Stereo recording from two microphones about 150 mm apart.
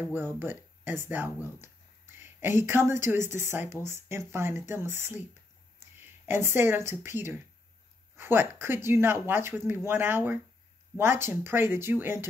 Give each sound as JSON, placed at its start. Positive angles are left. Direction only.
{"t": 0.1, "sound": "speech", "side_deg": -15}
{"t": 6.2, "sound": "speech", "side_deg": -15}